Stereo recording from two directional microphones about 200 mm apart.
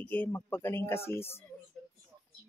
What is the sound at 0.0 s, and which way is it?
A woman's voice, 10° left (ahead or behind).